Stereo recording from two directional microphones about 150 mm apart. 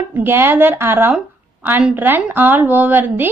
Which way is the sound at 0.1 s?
15° right (ahead or behind).